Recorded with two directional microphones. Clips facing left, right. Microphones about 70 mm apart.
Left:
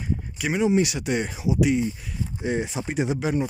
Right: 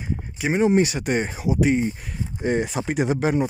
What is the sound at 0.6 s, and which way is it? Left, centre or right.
Speech, right.